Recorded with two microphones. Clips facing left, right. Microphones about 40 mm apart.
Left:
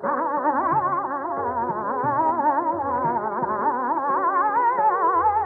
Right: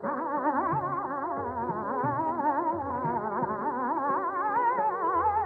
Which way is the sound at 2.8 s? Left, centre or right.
Left.